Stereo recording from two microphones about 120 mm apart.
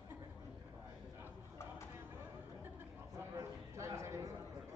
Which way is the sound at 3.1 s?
25° right (ahead or behind).